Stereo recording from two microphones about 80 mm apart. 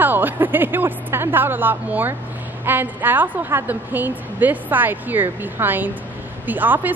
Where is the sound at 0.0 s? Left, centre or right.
Right.